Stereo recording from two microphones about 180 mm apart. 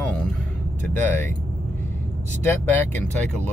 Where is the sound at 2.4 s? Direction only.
10° left (ahead or behind).